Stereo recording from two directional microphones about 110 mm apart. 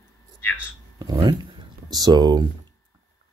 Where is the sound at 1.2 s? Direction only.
40° right (ahead or behind).